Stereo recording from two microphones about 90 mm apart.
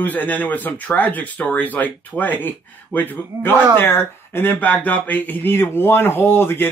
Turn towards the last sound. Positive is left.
turn(degrees=25)  # may be behind; listen again after turning